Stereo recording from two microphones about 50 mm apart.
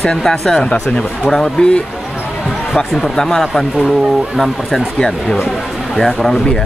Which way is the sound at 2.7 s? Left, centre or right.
Centre.